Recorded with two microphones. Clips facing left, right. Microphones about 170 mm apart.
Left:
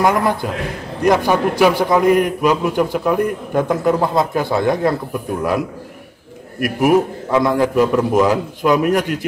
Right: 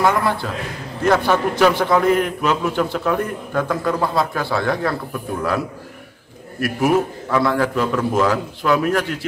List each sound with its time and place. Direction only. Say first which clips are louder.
0.0 s a man's voice: left 2 dB; 15° left (ahead or behind)
6.6 s a man's voice: left 3 dB; 15° left (ahead or behind)